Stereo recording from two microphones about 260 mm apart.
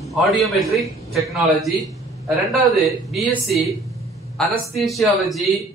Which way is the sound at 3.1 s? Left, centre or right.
Centre.